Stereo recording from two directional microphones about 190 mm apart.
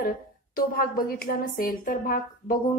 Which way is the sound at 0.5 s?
50° left (ahead or behind).